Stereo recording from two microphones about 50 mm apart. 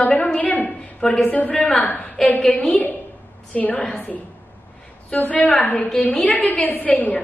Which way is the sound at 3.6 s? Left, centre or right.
Left.